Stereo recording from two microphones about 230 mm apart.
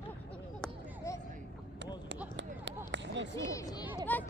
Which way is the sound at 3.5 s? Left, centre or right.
Centre.